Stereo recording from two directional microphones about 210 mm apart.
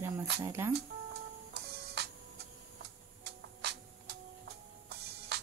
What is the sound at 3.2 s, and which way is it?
Music, 50° right (ahead or behind).